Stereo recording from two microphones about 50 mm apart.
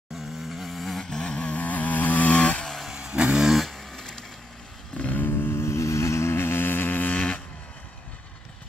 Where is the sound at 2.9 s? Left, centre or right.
Centre.